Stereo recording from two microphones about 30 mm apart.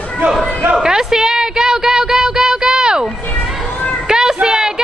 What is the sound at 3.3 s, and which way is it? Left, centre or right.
Children playing, left.